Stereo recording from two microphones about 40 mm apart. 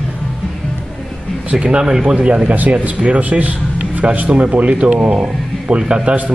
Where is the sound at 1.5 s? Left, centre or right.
Right.